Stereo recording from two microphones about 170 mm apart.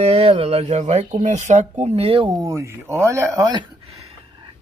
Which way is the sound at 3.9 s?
35° right (ahead or behind).